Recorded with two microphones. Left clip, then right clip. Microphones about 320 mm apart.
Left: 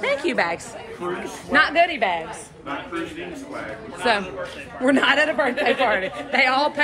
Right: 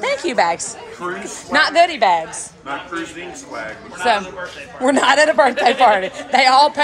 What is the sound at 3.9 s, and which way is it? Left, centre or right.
A woman's voice, centre.